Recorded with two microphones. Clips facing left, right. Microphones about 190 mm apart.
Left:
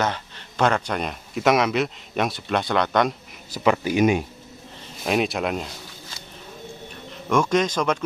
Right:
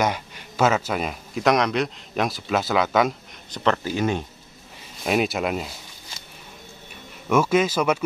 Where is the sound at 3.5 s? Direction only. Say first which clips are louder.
Left 2 dB; 15° left (ahead or behind).